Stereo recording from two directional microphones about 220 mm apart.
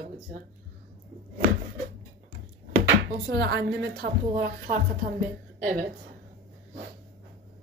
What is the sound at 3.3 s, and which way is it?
A woman's voice, 45° right (ahead or behind).